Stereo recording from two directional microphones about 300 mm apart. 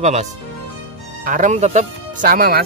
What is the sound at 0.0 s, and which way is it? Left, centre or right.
Speech, right.